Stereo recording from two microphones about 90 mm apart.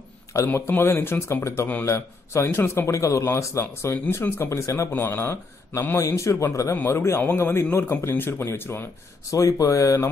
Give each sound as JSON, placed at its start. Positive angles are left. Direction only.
{"t": 0.5, "sound": "speech", "side_deg": 25}
{"t": 3.9, "sound": "speech", "side_deg": 20}